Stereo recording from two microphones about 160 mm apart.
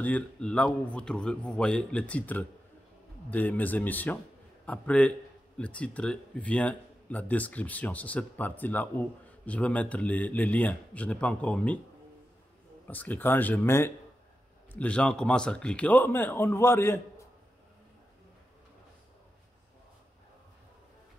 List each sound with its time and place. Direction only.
0.0 s speech: 10° left (ahead or behind)
12.8 s speech: 10° left (ahead or behind)